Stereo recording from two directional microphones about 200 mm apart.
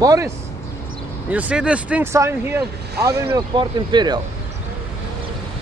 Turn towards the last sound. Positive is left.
turn(degrees=-20)  # may be behind; listen again after turning